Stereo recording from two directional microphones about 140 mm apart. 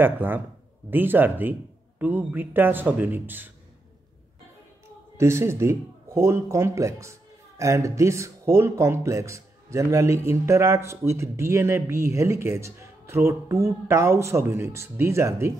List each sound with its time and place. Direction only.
0.0 s a man's voice: 15° right (ahead or behind)
5.1 s speech: 20° right (ahead or behind)